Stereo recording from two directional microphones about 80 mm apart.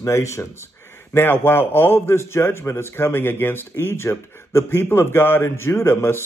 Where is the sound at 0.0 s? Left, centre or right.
Left.